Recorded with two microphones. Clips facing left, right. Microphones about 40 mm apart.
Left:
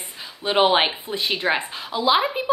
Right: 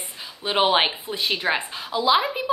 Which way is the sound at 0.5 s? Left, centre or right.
Centre.